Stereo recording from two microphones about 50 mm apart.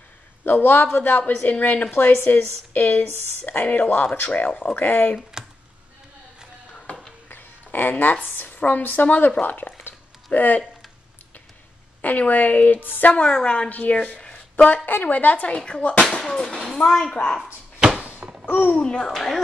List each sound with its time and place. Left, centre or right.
0.5 s a man's voice: left
1.9 s speech: left
5.3 s computer keyboard: centre
7.2 s a sound: left
8.3 s speech: left
9.8 s a sound: left
12.0 s speech: left
13.1 s speech: centre
14.9 s a child's voice: left; by 17.1 s centre
18.0 s thunk: right
18.4 s a sound: left
18.7 s speech: left
19.0 s speech: centre